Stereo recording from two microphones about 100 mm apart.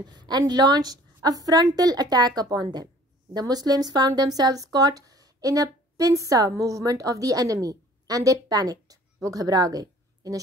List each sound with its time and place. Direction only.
0.0 s a woman's voice: 45° right (ahead or behind)